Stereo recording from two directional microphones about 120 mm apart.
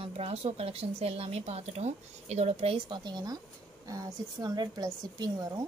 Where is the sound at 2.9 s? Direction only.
35° right (ahead or behind).